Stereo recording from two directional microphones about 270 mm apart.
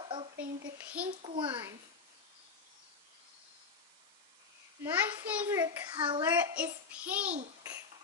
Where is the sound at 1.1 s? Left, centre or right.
Right.